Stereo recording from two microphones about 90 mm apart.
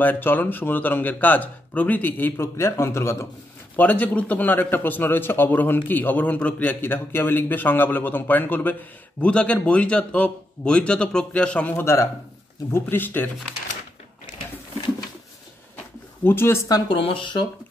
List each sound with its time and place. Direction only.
0.0 s a man's voice: 20° left (ahead or behind)
3.7 s a man's voice: 15° left (ahead or behind)
11.7 s a man's voice: 30° left (ahead or behind)
16.3 s a man's voice: 25° left (ahead or behind)
16.9 s speech: 80° left; by 17.5 s 60° left (ahead or behind)